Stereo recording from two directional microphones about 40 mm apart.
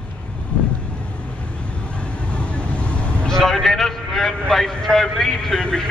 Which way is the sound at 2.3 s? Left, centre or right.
Left.